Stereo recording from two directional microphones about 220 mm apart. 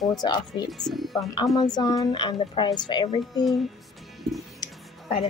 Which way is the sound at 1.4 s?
20° left (ahead or behind).